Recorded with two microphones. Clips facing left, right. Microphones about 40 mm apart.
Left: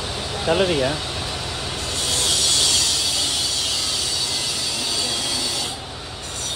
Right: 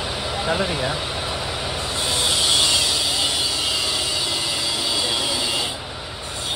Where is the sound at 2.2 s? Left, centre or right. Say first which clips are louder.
Right 2 dB; right.